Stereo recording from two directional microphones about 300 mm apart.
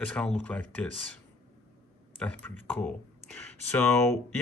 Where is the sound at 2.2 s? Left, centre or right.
Centre.